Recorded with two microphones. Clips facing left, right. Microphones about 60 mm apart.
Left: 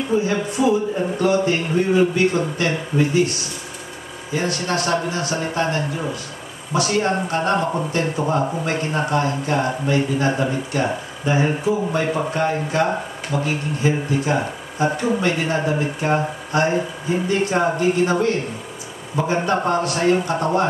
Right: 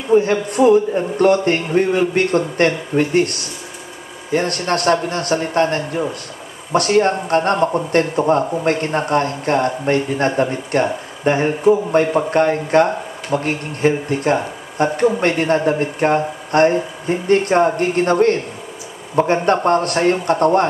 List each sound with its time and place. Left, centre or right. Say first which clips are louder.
0.1 s a man's voice: right 8 dB; right
19.4 s a man's voice: right 4 dB; right